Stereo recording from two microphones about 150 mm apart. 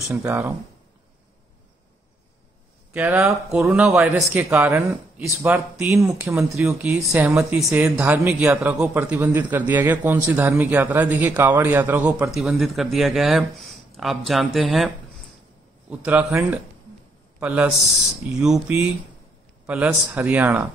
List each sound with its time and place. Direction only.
0.1 s speech: 15° right (ahead or behind)
2.9 s speech: 10° right (ahead or behind)
8.4 s speech: 5° right (ahead or behind)
15.9 s speech: 10° right (ahead or behind)